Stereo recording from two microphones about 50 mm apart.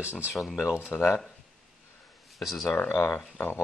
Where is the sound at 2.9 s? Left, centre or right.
Left.